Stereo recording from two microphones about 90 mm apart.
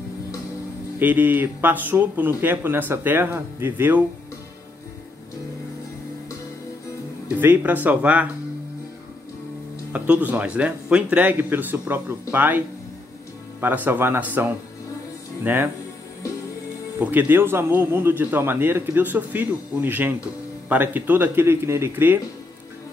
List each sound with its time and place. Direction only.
0.9 s a man's voice: 20° right (ahead or behind)
7.2 s speech: 20° right (ahead or behind)
9.9 s a man's voice: 15° right (ahead or behind)
17.0 s a man's voice: 20° right (ahead or behind)